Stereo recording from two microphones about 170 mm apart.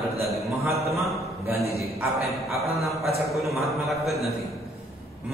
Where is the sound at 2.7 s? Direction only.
Centre (ahead or behind).